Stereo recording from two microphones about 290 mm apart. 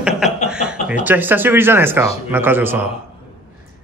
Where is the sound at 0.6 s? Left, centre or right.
Centre.